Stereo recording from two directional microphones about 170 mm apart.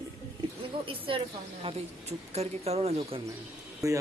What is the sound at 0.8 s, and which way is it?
A woman's voice, 30° right (ahead or behind).